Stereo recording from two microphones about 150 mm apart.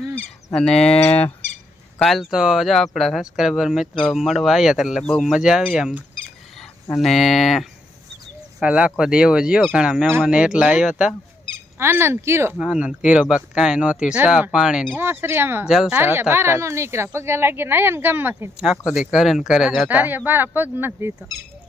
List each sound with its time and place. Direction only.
0.0 s a sound: 5° left (ahead or behind)
2.0 s speech: centre (ahead or behind)
11.8 s a woman's voice: 15° right (ahead or behind)
12.5 s speech: 5° right (ahead or behind)
15.0 s a woman's voice: 15° right (ahead or behind)
15.7 s speech: 5° right (ahead or behind)
16.0 s a woman's voice: 15° right (ahead or behind)
18.9 s a woman's voice: centre (ahead or behind)